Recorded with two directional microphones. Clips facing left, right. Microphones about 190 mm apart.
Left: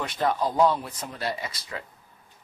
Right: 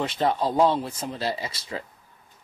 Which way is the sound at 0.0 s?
25° right (ahead or behind).